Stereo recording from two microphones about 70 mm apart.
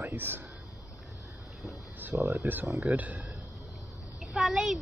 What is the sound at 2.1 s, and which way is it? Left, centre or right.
Speech, right.